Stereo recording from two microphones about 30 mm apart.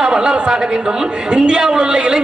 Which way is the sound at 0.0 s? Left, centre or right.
Centre.